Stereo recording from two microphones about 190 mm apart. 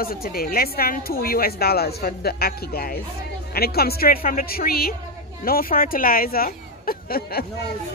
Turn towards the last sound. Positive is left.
turn(degrees=55)  # may be behind; listen again after turning